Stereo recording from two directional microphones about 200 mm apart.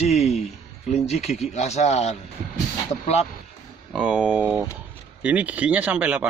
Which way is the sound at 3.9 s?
Centre (ahead or behind).